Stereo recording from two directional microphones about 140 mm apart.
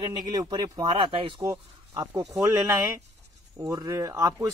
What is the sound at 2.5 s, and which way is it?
Speech, 20° right (ahead or behind).